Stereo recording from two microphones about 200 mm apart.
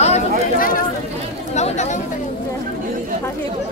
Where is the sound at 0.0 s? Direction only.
40° left (ahead or behind).